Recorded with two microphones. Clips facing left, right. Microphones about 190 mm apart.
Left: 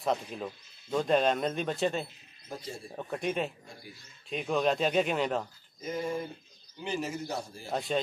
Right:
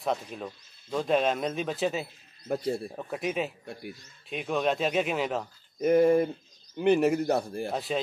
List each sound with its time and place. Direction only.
0.0 s speech: centre (ahead or behind)
2.4 s a man's voice: 65° right (ahead or behind)
3.0 s speech: 5° right (ahead or behind)
5.8 s a man's voice: 60° right (ahead or behind)
7.7 s speech: centre (ahead or behind)